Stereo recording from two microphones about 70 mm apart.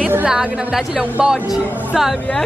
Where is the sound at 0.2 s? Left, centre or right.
Centre.